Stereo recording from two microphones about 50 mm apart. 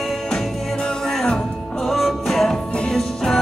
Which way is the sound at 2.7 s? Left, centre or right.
Centre.